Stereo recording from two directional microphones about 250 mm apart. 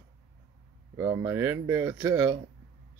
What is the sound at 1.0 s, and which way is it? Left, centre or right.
Speech, centre.